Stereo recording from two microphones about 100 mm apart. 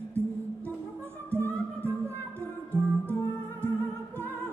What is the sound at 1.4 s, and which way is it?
Music, 20° left (ahead or behind).